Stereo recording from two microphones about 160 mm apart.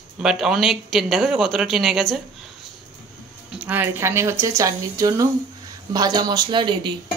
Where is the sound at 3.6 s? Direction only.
10° right (ahead or behind); by 6.9 s 30° right (ahead or behind).